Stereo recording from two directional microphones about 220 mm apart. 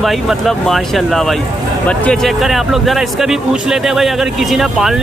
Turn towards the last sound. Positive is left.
turn(degrees=0)  # may be behind; listen again after turning